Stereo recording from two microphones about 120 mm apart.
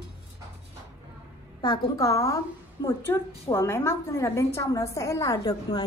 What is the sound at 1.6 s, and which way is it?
A woman's voice, 30° left (ahead or behind).